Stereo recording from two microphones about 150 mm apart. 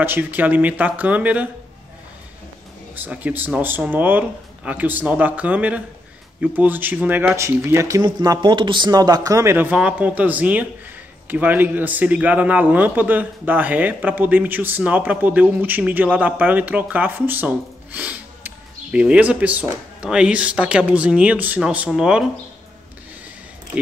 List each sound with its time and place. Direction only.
0.0 s a man's voice: 15° right (ahead or behind)
2.9 s a man's voice: 10° right (ahead or behind)